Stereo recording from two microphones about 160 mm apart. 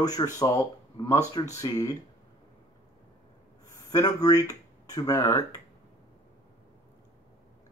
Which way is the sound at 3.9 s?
25° left (ahead or behind).